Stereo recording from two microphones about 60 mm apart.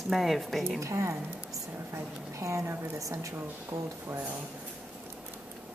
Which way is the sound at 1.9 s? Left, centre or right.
Right.